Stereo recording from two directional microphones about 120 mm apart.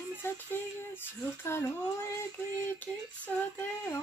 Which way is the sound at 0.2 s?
15° left (ahead or behind).